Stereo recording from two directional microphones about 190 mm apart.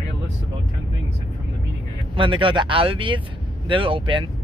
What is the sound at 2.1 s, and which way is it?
Speech, 25° right (ahead or behind).